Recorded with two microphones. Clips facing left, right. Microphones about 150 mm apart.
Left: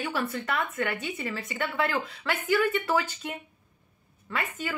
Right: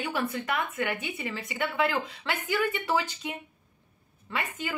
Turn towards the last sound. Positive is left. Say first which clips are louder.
# left 1 dB
turn(degrees=-15)  # may be behind; listen again after turning